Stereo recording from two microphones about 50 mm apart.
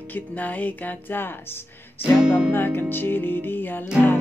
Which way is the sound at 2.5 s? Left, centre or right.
Left.